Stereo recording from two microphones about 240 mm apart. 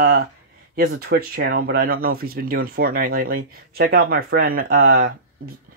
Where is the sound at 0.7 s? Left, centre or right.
Right.